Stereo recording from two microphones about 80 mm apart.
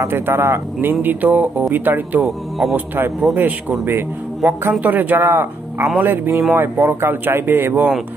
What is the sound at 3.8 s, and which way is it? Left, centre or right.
Speech, right.